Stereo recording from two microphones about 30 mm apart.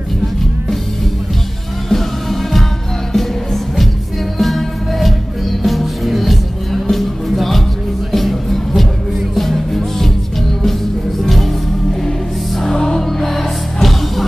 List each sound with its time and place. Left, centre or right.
1.9 s music: centre
12.7 s music: left
13.2 s music: centre